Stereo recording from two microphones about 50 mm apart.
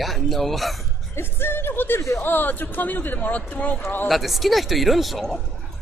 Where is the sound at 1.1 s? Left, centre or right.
Left.